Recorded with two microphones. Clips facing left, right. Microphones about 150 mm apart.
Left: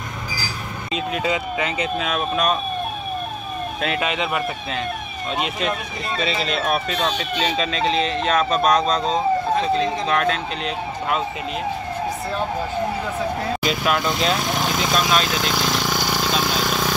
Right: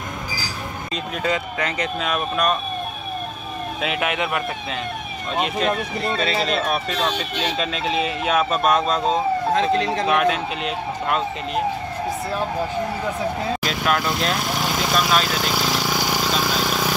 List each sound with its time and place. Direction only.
0.9 s speech: 5° left (ahead or behind)
3.8 s speech: 5° right (ahead or behind)
6.5 s speech: centre (ahead or behind)
9.6 s speech: 80° right
10.0 s speech: 5° right (ahead or behind)
13.6 s vehicle: centre (ahead or behind)